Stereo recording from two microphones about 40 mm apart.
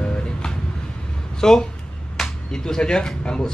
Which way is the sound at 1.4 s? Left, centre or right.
Centre.